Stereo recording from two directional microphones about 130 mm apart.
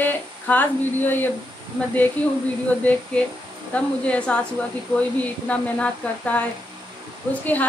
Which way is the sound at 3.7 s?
10° left (ahead or behind).